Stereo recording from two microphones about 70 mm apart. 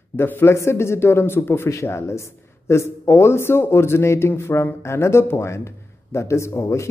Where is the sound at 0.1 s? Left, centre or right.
Left.